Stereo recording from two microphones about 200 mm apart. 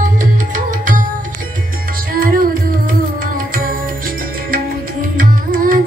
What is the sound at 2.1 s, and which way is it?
Music, 45° right (ahead or behind).